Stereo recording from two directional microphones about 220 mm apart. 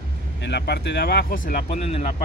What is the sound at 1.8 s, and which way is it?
Speech, 30° left (ahead or behind).